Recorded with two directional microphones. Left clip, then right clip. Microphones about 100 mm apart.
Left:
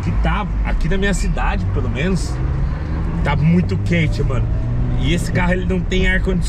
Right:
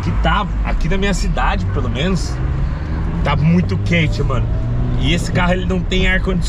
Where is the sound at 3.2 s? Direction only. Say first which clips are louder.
Right 2 dB; 5° left (ahead or behind).